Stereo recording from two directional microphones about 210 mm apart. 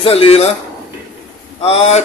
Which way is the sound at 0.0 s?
25° left (ahead or behind).